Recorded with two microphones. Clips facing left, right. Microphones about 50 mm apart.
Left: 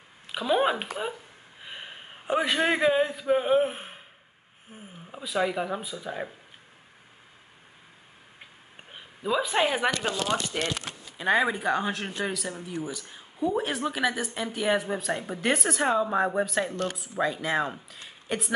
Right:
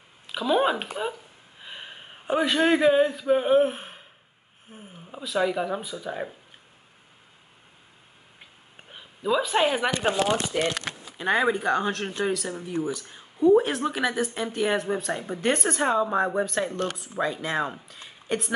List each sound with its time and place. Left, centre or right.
0.3 s speech: centre
1.6 s a sound: centre
3.3 s speech: centre
5.2 s speech: centre
8.9 s speech: centre
9.8 s speech: right
10.7 s a sound: right
11.1 s speech: centre
12.3 s speech: centre
12.9 s speech: centre